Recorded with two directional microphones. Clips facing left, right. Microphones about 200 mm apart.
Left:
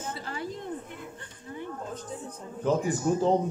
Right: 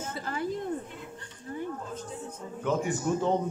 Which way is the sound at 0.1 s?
50° right (ahead or behind).